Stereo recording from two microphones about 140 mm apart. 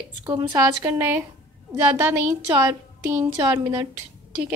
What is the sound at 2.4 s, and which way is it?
A woman's voice, 20° right (ahead or behind).